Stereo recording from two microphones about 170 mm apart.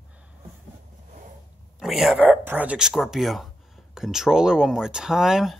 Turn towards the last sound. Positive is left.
turn(degrees=0)  # may be behind; listen again after turning